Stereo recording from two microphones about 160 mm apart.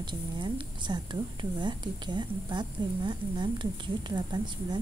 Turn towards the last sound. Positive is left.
turn(degrees=-25)  # may be behind; listen again after turning